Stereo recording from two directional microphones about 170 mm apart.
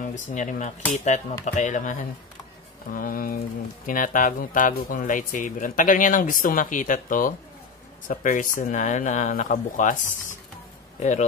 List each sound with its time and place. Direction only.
0.0 s speech: 45° left (ahead or behind)